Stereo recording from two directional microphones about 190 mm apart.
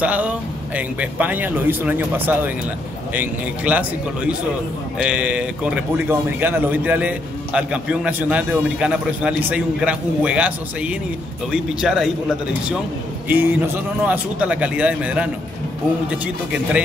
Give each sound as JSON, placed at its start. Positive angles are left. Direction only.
{"t": 0.0, "sound": "a man's voice", "side_deg": -5}
{"t": 13.3, "sound": "a man's voice", "side_deg": -10}